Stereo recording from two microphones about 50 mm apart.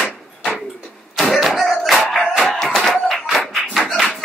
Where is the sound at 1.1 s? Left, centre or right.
Centre.